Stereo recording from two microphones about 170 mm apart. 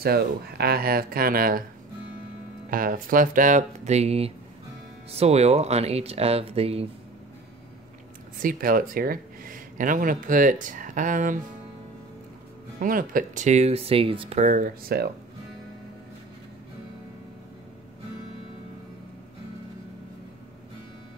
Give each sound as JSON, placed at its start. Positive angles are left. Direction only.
{"t": 0.0, "sound": "speech", "side_deg": -65}
{"t": 2.7, "sound": "speech", "side_deg": -55}
{"t": 8.4, "sound": "speech", "side_deg": -55}
{"t": 12.7, "sound": "speech", "side_deg": -55}
{"t": 14.4, "sound": "speech", "side_deg": -55}